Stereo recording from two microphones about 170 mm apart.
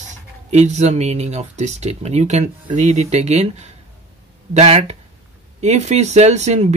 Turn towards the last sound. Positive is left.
turn(degrees=-40)  # may be behind; listen again after turning